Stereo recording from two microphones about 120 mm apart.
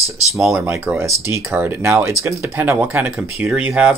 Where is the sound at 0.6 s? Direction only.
15° right (ahead or behind).